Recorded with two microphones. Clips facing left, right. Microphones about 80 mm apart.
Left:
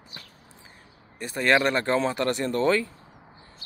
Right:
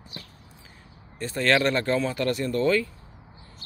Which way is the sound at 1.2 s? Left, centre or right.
Centre.